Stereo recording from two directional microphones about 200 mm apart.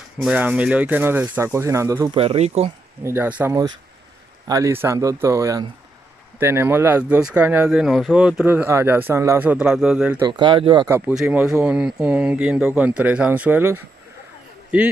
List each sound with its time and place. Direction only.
0.2 s speech: 5° right (ahead or behind)
2.1 s speech: 30° right (ahead or behind)
3.0 s speech: 10° right (ahead or behind)
10.2 s speech: 25° right (ahead or behind)
10.9 s speech: 10° right (ahead or behind)